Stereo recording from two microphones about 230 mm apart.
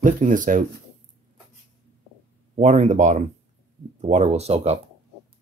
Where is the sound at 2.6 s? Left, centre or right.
Right.